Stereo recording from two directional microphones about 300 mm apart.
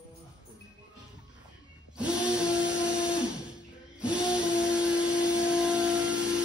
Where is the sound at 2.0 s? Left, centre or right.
Centre.